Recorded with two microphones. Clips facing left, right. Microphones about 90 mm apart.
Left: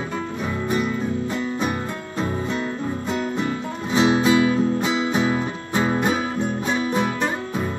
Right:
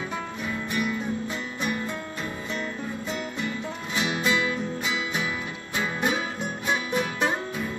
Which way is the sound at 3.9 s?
35° left (ahead or behind).